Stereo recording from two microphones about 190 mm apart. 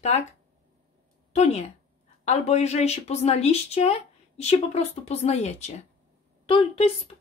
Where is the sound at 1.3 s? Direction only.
35° left (ahead or behind).